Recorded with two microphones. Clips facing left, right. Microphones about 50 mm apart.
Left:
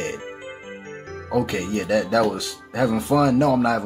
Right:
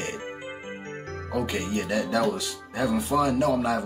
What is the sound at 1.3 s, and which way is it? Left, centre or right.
Speech, left.